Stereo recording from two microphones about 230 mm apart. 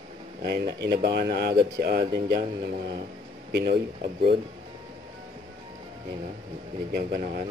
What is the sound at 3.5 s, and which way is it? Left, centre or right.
Speech, right.